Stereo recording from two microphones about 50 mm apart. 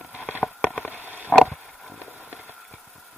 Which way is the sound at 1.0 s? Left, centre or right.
Right.